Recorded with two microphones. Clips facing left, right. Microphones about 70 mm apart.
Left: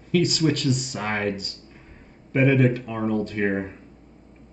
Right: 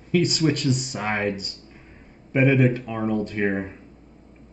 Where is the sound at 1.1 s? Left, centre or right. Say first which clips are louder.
Right 1 dB; centre.